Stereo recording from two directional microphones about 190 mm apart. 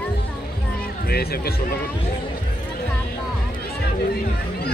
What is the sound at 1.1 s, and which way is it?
Music, 55° left (ahead or behind).